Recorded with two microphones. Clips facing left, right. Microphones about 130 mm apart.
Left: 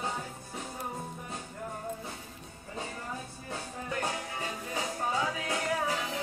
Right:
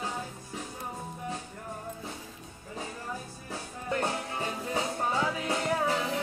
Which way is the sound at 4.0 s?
30° right (ahead or behind).